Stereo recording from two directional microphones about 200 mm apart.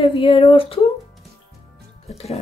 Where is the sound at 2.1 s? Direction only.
30° left (ahead or behind).